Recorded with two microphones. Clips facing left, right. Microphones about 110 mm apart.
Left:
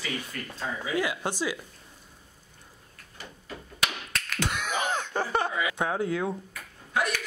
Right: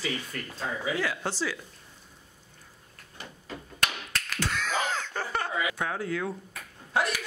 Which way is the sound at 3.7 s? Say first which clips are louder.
Even; 5° left (ahead or behind).